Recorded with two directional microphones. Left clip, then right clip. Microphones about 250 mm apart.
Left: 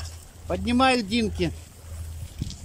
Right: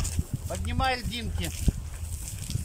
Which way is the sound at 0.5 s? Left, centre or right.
Left.